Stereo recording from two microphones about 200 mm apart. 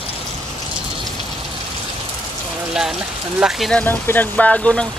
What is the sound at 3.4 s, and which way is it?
Speech, centre (ahead or behind).